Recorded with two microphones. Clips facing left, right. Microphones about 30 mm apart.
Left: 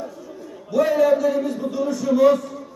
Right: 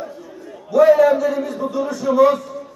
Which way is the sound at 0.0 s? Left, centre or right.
Centre.